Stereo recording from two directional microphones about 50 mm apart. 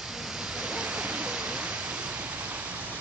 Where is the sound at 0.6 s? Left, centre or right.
Centre.